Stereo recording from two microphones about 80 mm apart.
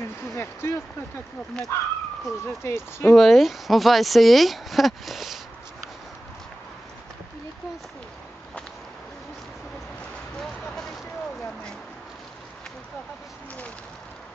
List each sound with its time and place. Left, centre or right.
0.2 s speech: left
3.1 s speech: centre
10.4 s a sound: centre